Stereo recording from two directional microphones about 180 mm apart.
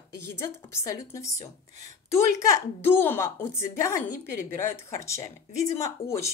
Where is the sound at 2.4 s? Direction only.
15° left (ahead or behind).